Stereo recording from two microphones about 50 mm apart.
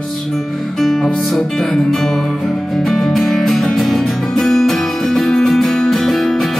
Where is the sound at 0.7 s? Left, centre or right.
Centre.